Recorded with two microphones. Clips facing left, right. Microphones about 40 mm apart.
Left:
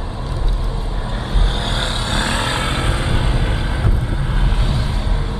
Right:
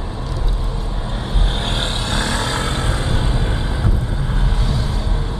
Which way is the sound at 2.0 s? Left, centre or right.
Centre.